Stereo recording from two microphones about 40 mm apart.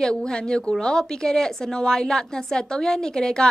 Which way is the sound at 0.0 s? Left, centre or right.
Centre.